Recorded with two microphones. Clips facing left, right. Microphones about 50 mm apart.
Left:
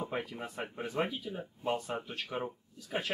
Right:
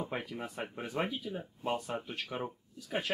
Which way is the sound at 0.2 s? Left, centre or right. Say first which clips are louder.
Even; centre.